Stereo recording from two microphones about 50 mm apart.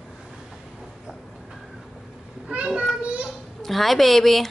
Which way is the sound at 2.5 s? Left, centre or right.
Right.